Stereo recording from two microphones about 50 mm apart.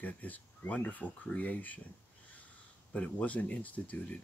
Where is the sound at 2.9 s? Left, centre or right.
Left.